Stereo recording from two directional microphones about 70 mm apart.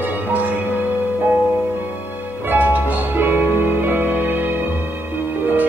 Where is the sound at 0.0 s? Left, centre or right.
Right.